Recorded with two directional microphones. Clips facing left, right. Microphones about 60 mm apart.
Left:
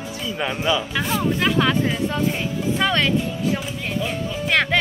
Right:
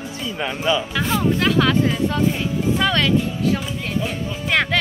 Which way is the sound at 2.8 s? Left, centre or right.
Left.